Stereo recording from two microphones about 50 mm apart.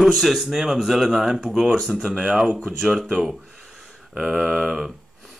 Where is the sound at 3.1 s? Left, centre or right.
Centre.